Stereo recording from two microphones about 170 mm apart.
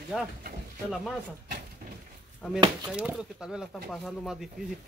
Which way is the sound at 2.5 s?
25° right (ahead or behind).